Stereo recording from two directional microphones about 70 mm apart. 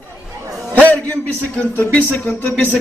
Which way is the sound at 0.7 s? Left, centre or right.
Left.